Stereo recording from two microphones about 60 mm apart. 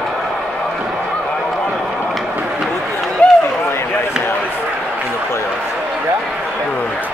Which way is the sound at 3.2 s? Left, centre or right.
Left.